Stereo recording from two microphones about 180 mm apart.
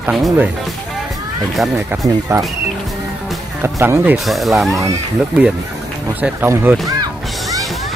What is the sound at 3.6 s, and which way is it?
Speech, 15° right (ahead or behind).